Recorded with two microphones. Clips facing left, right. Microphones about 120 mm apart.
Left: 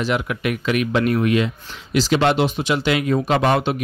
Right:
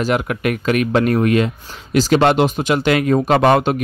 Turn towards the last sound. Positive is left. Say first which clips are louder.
# right 5 dB
turn(degrees=-50)  # may be behind; listen again after turning